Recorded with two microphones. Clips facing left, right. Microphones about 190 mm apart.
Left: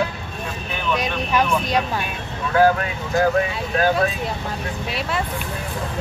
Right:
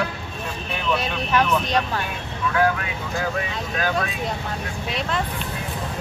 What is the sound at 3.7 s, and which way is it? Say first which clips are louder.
Speech: left 6 dB; 30° left (ahead or behind).